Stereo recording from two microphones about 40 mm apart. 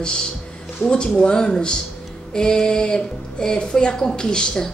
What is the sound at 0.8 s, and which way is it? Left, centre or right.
A woman's voice, left.